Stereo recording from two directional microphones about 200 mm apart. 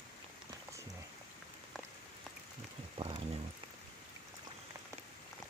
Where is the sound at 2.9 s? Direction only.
30° right (ahead or behind).